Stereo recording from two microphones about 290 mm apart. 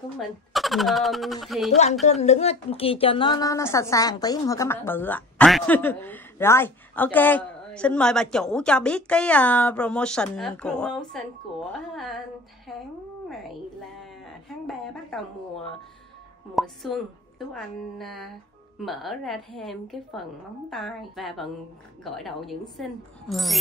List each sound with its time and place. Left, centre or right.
0.5 s a woman's voice: centre
2.0 s a woman's voice: left; by 12.2 s centre
14.7 s a woman's voice: centre